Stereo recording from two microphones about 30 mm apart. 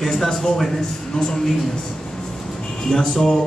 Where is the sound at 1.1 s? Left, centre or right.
Left.